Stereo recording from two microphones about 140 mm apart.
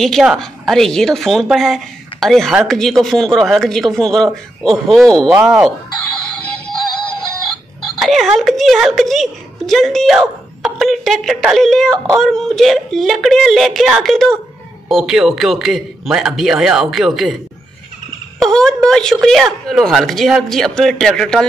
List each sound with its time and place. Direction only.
0.0 s a woman's voice: centre (ahead or behind)
8.0 s a woman's voice: centre (ahead or behind)
18.4 s a woman's voice: 5° left (ahead or behind)